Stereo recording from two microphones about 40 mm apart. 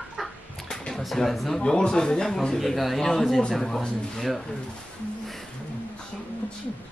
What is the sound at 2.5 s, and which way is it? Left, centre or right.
A man's voice, centre.